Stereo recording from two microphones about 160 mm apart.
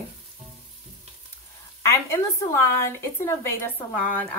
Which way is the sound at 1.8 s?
15° left (ahead or behind).